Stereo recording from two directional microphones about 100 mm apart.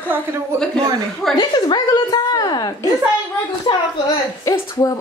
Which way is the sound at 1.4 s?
45° left (ahead or behind).